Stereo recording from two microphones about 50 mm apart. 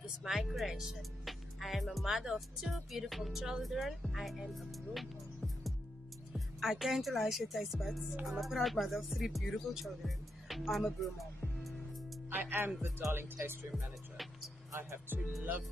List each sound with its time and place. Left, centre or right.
0.2 s speech: centre
12.3 s speech: right
15.0 s music: right